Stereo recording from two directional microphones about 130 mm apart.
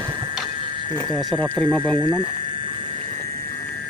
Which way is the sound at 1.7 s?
35° right (ahead or behind).